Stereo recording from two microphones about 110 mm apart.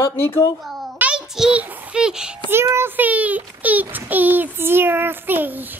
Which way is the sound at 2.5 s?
25° right (ahead or behind).